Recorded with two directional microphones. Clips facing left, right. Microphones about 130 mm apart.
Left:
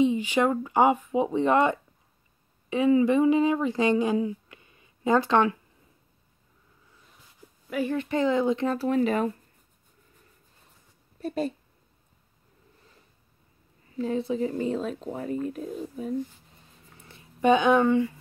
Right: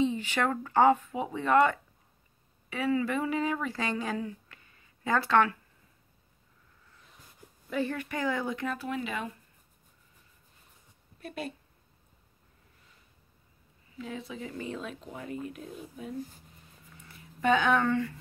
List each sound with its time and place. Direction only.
0.0 s speech: 15° left (ahead or behind)
7.7 s speech: 15° left (ahead or behind); by 9.3 s 40° left (ahead or behind)
11.1 s speech: 30° left (ahead or behind)
13.9 s speech: 35° left (ahead or behind)
16.9 s a sound: 25° left (ahead or behind)